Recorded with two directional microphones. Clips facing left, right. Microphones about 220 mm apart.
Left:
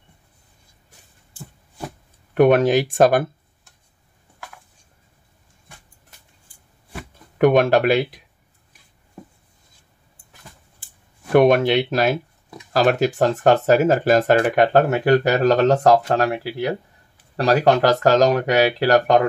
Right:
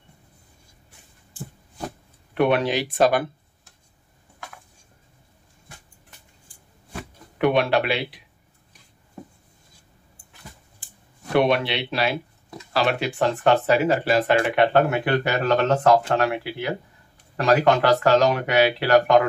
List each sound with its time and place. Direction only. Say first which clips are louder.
2.3 s speech: left 6 dB; 45° left (ahead or behind)
7.3 s speech: left 5 dB; 45° left (ahead or behind)
11.3 s speech: left 6 dB; 45° left (ahead or behind)